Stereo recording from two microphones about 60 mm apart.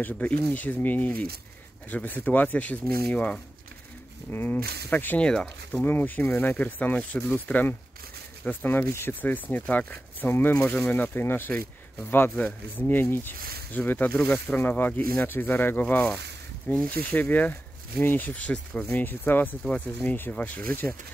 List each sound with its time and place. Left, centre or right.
0.0 s speech: left
4.3 s speech: left
5.2 s speech: centre
5.9 s speech: left
9.2 s speech: left
10.5 s speech: left
10.9 s speech: left
15.2 s speech: left
18.5 s speech: centre
18.9 s speech: left